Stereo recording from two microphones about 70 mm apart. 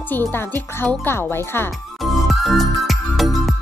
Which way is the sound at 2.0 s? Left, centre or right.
Centre.